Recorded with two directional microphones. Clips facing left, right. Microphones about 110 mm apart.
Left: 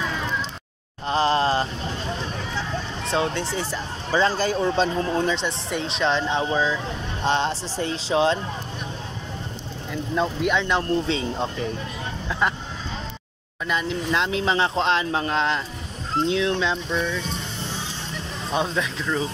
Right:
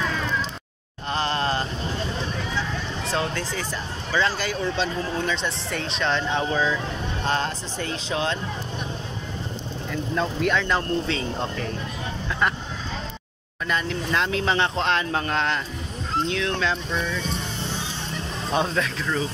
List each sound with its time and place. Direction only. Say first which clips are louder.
1.0 s a sound: left 5 dB; 30° left (ahead or behind)
3.1 s speech: left 3 dB; 25° left (ahead or behind)
5.2 s speech: left 2 dB; 25° left (ahead or behind)
9.8 s speech: left 2 dB; 15° left (ahead or behind)
13.7 s speech: left 1 dB; 15° left (ahead or behind)
16.9 s speech: left 2 dB; 5° left (ahead or behind)
18.8 s speech: even; 15° left (ahead or behind)